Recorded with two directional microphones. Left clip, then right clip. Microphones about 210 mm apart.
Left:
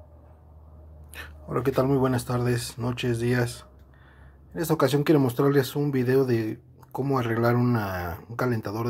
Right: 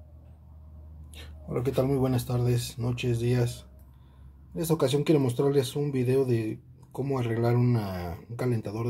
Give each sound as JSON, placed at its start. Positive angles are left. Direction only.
{"t": 1.5, "sound": "speech", "side_deg": 5}
{"t": 4.8, "sound": "speech", "side_deg": 5}